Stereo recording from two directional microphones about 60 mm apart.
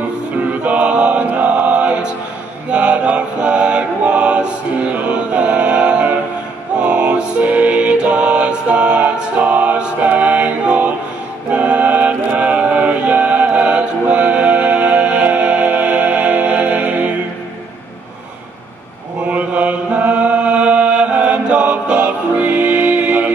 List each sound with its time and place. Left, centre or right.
0.7 s chant: right
2.7 s mantra: centre
6.8 s music: centre
19.2 s chant: right